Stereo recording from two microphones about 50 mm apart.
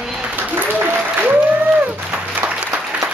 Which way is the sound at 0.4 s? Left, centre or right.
Right.